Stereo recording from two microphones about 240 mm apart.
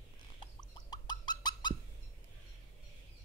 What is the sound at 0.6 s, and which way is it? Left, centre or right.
Bird, centre.